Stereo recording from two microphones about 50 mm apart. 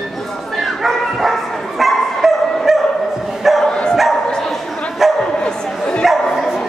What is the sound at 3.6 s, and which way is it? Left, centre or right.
Dog, centre.